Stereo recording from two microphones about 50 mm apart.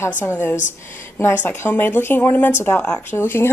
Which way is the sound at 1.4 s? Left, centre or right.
Left.